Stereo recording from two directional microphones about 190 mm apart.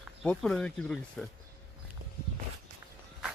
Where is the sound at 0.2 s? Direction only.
5° left (ahead or behind).